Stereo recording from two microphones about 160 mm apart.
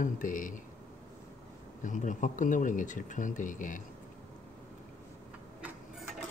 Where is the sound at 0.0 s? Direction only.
55° left (ahead or behind).